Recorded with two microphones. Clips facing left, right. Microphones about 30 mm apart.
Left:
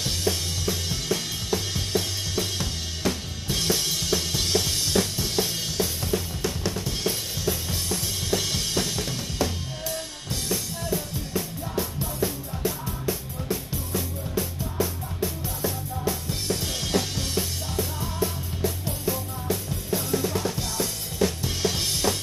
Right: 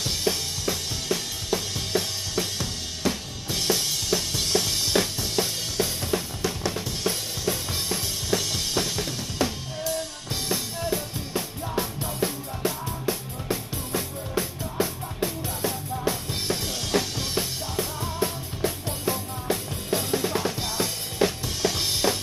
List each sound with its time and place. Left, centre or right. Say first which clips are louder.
0.0 s drum kit: even; centre
5.8 s drum kit: right 1 dB; centre
7.0 s drum kit: even; centre
7.6 s music: right 1 dB; right
8.3 s drum kit: even; centre
10.3 s music: even; right
16.6 s drum kit: even; centre
17.2 s music: even; right
20.0 s drum kit: even; right
21.5 s drum kit: right 2 dB; centre